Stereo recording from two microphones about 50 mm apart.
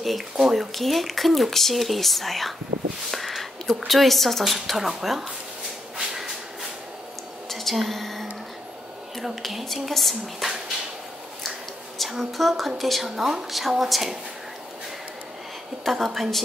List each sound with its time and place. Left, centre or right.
0.0 s speech: centre
5.9 s train: centre
7.4 s a sound: centre
9.2 s speech: centre
12.0 s speech: centre
13.1 s speech: centre
15.9 s speech: centre